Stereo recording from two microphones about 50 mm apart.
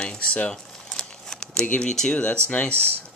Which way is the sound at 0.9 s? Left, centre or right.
Centre.